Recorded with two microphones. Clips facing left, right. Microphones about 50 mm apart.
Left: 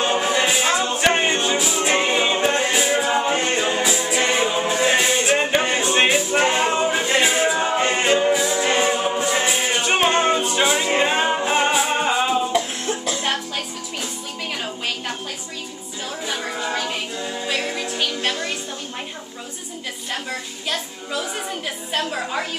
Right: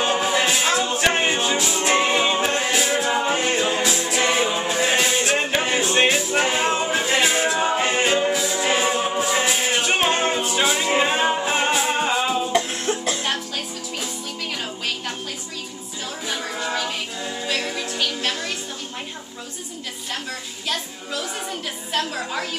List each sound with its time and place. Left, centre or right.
0.0 s a capella: centre
16.3 s music: centre
20.2 s child singing: centre